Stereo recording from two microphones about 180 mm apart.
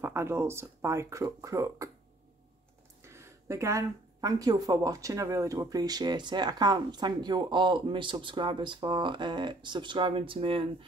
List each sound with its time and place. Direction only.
0.0 s speech: 15° right (ahead or behind)
3.0 s speech: 15° right (ahead or behind)